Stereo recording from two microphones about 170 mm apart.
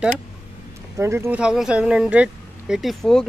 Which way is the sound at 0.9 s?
15° right (ahead or behind).